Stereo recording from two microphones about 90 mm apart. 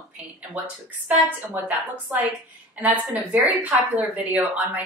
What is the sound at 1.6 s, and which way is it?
Speech, 20° right (ahead or behind).